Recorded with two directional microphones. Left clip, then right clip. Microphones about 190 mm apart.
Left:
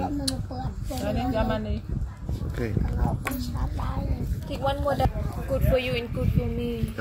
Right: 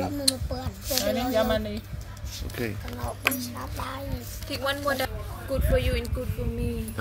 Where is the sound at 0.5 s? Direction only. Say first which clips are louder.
Right 5 dB; 50° right (ahead or behind).